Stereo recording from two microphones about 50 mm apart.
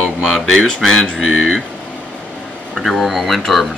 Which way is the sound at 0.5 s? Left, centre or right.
Centre.